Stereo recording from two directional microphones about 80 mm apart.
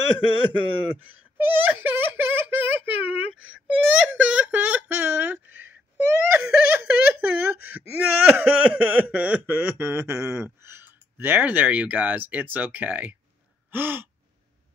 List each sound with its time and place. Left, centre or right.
0.4 s a man's voice: left
1.5 s speech: right
3.1 s wail: centre
7.2 s speech: right
9.8 s speech: right
13.7 s gasp: right